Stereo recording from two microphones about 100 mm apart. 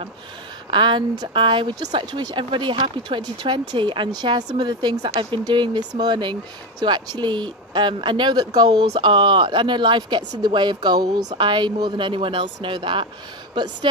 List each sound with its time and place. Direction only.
0.7 s speech: 50° right (ahead or behind)